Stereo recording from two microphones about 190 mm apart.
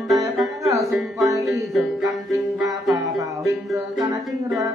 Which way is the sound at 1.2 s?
15° right (ahead or behind).